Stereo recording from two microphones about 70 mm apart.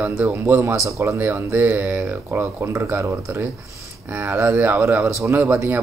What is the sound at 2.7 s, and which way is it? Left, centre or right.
Speech, right.